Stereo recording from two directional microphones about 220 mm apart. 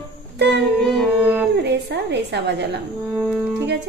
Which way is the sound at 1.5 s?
50° right (ahead or behind).